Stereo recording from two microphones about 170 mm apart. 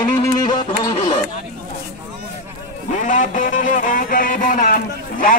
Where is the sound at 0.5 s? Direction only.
25° left (ahead or behind).